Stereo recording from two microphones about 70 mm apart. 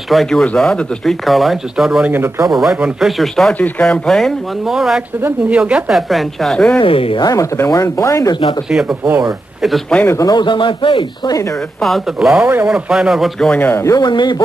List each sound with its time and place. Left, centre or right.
0.1 s speech: centre
2.0 s speech: right
2.4 s speech: centre
5.5 s a woman's voice: centre
5.9 s speech: centre
7.3 s speech: left
8.3 s speech: left
8.6 s a woman's voice: centre
9.9 s a man's voice: centre
10.2 s speech: left
11.8 s speech: centre
13.6 s speech: left
13.9 s speech: left